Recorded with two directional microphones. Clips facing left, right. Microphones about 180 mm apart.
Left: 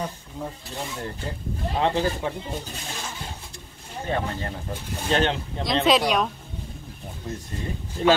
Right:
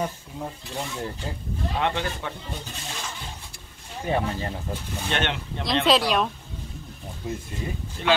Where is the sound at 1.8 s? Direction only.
30° left (ahead or behind).